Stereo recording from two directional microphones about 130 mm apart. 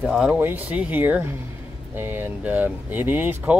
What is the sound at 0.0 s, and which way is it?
Speech, 5° right (ahead or behind).